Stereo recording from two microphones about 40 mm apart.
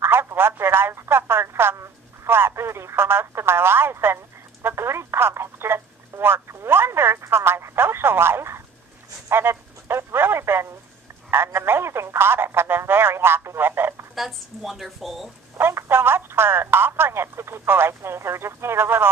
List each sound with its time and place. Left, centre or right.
0.0 s speech: right
4.6 s speech: right
6.2 s speech: right
11.2 s speech: right
14.1 s a woman's voice: centre
15.5 s speech: right